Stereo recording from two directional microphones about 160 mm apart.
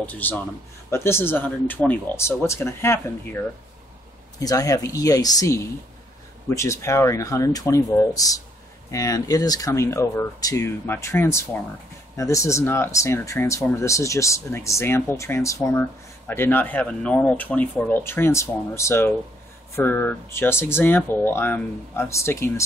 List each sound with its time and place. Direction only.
0.0 s speech: 10° left (ahead or behind)